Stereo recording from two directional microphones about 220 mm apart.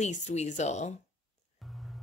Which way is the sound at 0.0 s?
30° left (ahead or behind).